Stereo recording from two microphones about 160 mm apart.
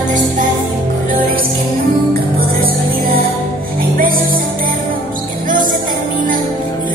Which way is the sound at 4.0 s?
65° right (ahead or behind).